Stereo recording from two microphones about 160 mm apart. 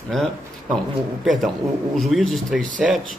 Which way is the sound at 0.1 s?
Centre (ahead or behind).